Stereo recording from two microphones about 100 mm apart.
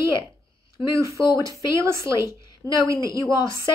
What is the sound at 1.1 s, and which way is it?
A woman's voice, 30° right (ahead or behind).